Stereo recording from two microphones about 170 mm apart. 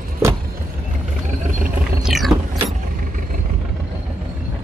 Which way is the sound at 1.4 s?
50° right (ahead or behind).